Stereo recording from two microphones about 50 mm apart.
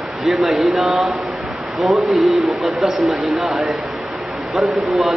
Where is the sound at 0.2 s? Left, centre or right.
Centre.